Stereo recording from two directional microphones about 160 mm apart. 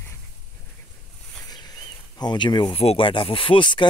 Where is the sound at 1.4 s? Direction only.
25° left (ahead or behind).